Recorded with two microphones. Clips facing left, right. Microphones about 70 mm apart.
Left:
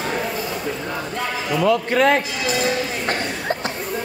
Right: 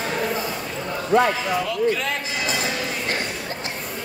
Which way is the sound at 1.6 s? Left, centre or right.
Left.